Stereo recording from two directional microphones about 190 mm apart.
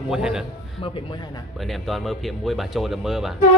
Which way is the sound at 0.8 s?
30° left (ahead or behind).